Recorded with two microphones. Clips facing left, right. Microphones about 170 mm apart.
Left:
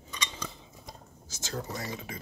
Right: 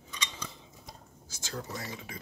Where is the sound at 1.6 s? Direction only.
40° left (ahead or behind).